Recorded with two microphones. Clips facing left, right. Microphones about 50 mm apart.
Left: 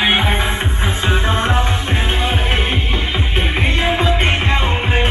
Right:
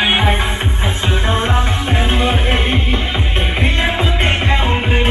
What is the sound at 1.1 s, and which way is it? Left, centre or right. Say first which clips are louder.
Music: even; left.